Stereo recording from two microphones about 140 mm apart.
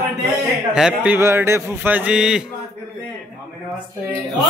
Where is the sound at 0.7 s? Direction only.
5° right (ahead or behind).